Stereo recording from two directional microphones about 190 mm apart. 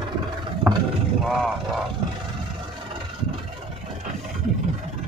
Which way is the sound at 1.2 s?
Centre (ahead or behind).